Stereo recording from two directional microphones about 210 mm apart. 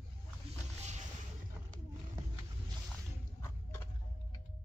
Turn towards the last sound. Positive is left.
turn(degrees=15)  # may be behind; listen again after turning